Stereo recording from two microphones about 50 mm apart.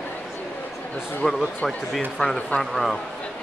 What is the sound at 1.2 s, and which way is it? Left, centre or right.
Speech, centre.